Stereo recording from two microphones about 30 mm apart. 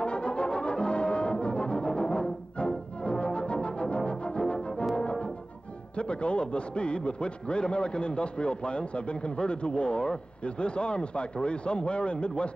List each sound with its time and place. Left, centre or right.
0.0 s brass instrument: left
2.0 s music: left
5.9 s a man's voice: left